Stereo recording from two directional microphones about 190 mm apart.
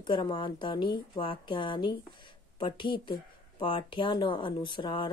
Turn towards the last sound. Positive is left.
turn(degrees=25)  # may be behind; listen again after turning